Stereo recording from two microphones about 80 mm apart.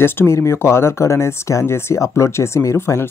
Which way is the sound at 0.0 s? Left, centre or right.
Left.